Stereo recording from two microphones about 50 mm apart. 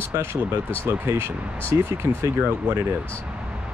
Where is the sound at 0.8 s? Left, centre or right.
Right.